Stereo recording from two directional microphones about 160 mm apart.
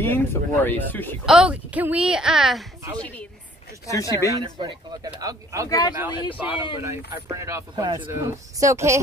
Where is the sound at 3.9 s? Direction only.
20° left (ahead or behind).